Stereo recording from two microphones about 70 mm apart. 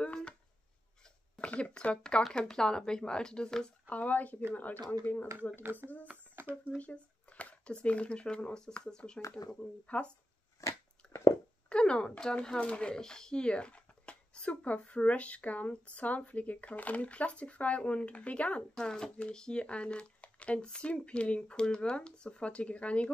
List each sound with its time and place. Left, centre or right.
0.0 s a sound: centre
1.5 s speech: centre
3.9 s speech: left
5.6 s speech: right
6.4 s a sound: right
6.8 s speech: centre
10.6 s biting: left
11.7 s speech: centre